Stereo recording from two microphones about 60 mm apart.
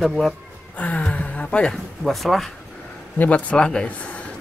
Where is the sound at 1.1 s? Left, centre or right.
Left.